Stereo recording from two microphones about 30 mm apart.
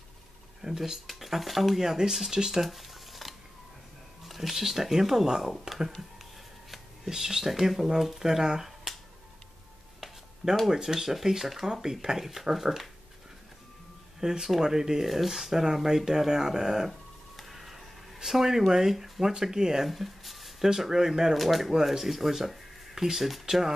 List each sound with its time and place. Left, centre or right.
0.6 s speech: centre
1.0 s speech: centre
1.8 s speech: centre
2.6 s a sound: centre
4.3 s speech: centre
7.2 s speech: centre
10.7 s speech: centre
14.2 s speech: right
17.4 s a sound: centre
18.8 s speech: centre
19.8 s speech: centre
20.7 s speech: centre
21.4 s speech: centre